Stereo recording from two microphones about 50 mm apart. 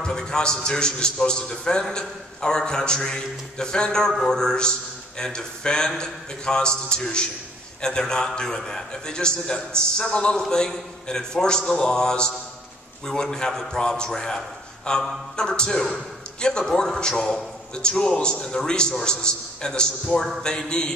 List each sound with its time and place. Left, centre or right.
0.0 s a man's voice: centre